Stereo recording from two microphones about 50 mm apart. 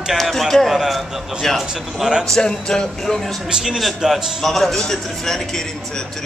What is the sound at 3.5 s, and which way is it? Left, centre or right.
Speech, centre.